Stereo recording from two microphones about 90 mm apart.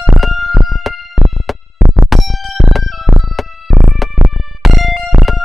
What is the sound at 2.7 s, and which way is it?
Music, centre (ahead or behind).